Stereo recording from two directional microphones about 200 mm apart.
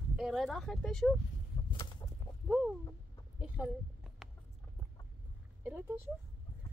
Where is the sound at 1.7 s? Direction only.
25° left (ahead or behind).